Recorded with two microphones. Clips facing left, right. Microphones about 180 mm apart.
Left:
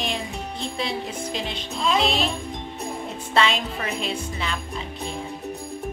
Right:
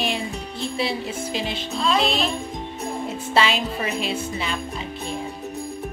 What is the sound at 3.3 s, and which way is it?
Music, 5° right (ahead or behind).